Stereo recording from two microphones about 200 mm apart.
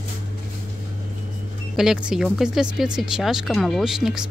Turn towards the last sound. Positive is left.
turn(degrees=0)  # may be behind; listen again after turning